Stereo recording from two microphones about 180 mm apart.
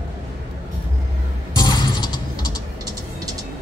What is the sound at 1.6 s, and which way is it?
Music, 25° left (ahead or behind).